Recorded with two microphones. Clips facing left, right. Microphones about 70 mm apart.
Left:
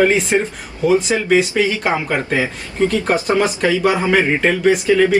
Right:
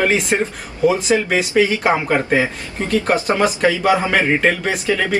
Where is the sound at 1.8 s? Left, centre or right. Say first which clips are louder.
Right 2 dB; centre.